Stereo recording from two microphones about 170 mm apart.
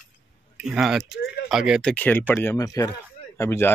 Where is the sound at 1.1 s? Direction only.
70° left (ahead or behind).